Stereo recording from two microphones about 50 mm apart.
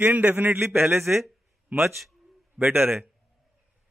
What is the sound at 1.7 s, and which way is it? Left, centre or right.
A man's voice, right.